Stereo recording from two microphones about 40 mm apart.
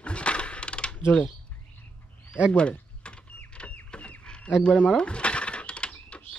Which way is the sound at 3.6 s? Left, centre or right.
Left.